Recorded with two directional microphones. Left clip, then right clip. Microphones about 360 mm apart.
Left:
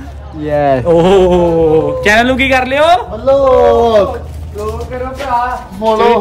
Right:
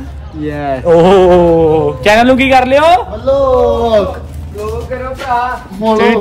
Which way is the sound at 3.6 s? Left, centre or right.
Left.